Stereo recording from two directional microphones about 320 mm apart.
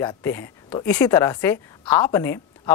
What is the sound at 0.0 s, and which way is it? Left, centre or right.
Speech, centre.